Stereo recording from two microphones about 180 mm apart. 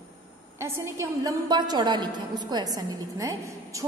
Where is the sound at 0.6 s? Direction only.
15° right (ahead or behind).